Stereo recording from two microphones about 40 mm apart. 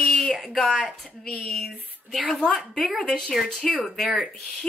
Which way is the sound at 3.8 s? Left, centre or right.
Centre.